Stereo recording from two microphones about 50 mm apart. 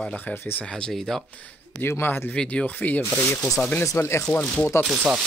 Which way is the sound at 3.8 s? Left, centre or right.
Left.